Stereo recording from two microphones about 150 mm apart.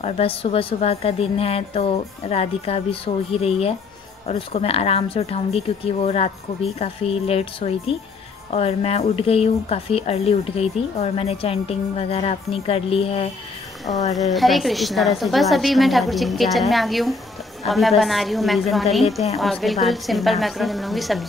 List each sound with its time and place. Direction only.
0.0 s a woman's voice: 40° left (ahead or behind)
14.1 s a woman's voice: centre (ahead or behind)